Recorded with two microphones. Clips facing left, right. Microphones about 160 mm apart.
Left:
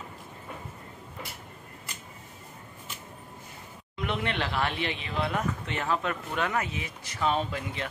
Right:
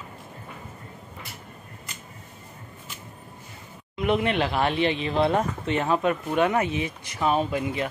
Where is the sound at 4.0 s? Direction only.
15° right (ahead or behind).